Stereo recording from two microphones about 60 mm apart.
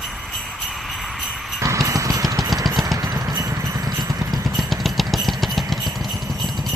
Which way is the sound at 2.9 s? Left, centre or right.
Right.